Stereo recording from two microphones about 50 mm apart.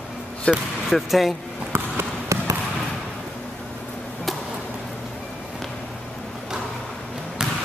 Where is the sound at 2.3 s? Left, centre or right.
Right.